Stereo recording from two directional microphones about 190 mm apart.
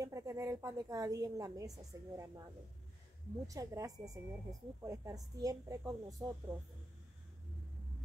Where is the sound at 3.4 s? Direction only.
20° right (ahead or behind).